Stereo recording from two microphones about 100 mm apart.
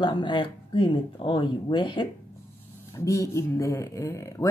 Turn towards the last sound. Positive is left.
turn(degrees=35)  # may be behind; listen again after turning